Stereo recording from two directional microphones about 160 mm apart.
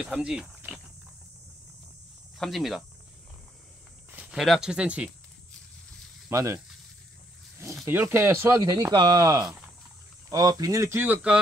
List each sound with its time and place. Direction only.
0.0 s speech: 5° right (ahead or behind)
2.3 s speech: centre (ahead or behind)
4.2 s speech: 5° right (ahead or behind)
6.3 s speech: 20° right (ahead or behind)
7.8 s speech: 15° right (ahead or behind)